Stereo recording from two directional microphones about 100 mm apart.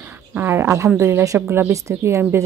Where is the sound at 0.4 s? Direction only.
20° right (ahead or behind).